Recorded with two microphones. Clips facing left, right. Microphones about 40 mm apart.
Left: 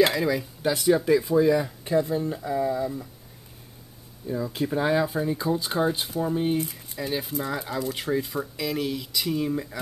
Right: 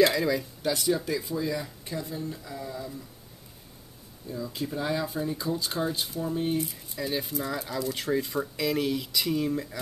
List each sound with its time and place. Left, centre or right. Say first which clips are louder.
0.1 s speech: left 2 dB; centre
4.3 s speech: left 6 dB; left; by 7.3 s centre
7.3 s speech: left 2 dB; left